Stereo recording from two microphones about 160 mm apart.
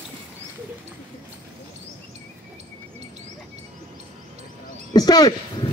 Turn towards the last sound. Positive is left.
turn(degrees=25)  # may be behind; listen again after turning